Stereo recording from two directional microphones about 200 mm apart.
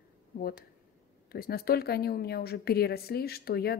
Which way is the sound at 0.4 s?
45° left (ahead or behind).